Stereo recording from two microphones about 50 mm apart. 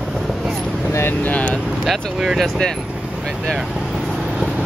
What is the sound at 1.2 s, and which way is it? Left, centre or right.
Speech, left.